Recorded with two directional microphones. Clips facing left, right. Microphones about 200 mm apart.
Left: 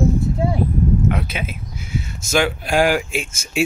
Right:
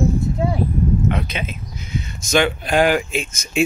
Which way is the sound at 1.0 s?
5° left (ahead or behind).